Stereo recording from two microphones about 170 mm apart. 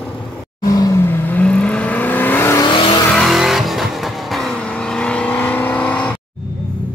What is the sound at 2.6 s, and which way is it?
Vehicle, 30° left (ahead or behind).